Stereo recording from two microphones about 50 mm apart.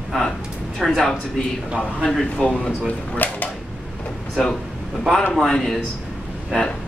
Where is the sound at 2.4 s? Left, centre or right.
Left.